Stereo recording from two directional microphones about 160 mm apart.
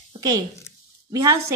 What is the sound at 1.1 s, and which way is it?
Speech, 20° right (ahead or behind).